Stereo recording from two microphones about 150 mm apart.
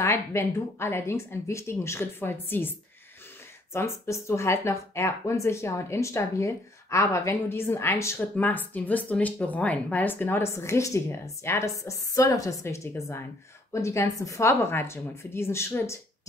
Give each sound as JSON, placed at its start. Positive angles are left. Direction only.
{"t": 0.0, "sound": "speech", "side_deg": 20}
{"t": 3.7, "sound": "speech", "side_deg": 15}